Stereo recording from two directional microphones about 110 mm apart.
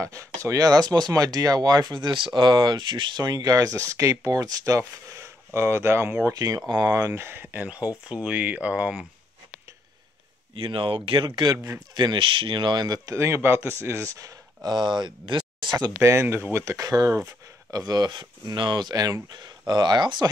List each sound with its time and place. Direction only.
0.0 s speech: 30° right (ahead or behind)
6.3 s speech: 35° right (ahead or behind); by 9.0 s 10° right (ahead or behind)
10.5 s speech: 55° right (ahead or behind)
11.5 s speech: 25° right (ahead or behind)
11.9 s speech: 40° right (ahead or behind)
16.0 s speech: 25° right (ahead or behind); by 20.2 s 40° right (ahead or behind)